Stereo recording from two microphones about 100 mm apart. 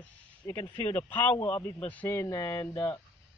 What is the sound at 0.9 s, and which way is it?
Speech, 20° left (ahead or behind).